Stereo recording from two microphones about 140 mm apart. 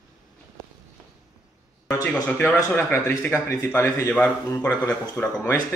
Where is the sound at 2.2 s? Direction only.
15° left (ahead or behind).